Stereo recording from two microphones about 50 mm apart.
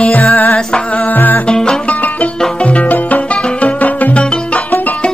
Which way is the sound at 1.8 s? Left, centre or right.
Left.